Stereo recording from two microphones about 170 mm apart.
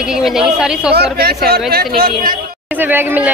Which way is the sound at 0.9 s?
70° right (ahead or behind).